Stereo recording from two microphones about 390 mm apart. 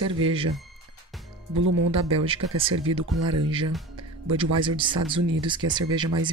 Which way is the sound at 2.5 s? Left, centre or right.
Centre.